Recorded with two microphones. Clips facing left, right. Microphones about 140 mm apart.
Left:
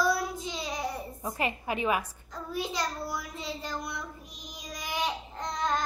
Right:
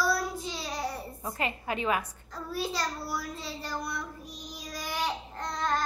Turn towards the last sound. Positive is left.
turn(degrees=20)  # may be behind; listen again after turning